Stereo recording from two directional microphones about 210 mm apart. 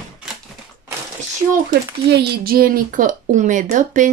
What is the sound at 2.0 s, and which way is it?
Speech, 50° right (ahead or behind).